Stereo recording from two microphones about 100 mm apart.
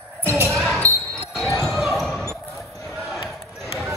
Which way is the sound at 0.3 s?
25° right (ahead or behind).